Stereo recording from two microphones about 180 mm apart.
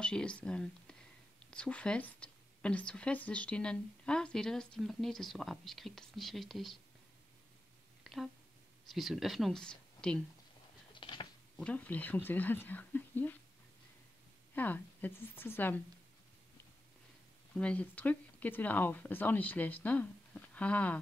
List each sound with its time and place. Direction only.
0.0 s a woman's voice: 5° left (ahead or behind)
8.0 s a sound: centre (ahead or behind)
8.8 s a woman's voice: centre (ahead or behind)
11.0 s a sound: 30° left (ahead or behind)
11.5 s speech: 5° left (ahead or behind)
14.5 s speech: 10° left (ahead or behind)
17.6 s speech: 5° left (ahead or behind)